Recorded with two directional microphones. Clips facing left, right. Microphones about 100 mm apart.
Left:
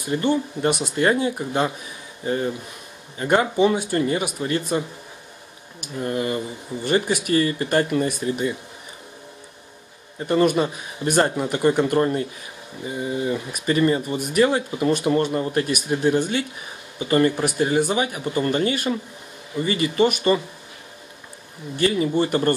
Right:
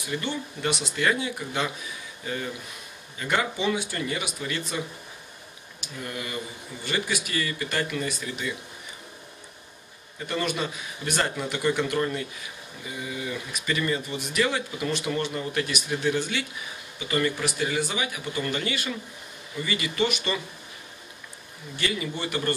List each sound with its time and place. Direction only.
0.0 s speech: 45° left (ahead or behind)
10.1 s speech: 35° left (ahead or behind)
21.7 s speech: 35° left (ahead or behind)